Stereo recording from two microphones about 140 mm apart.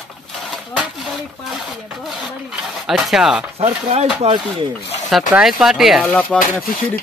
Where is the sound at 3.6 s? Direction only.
50° right (ahead or behind).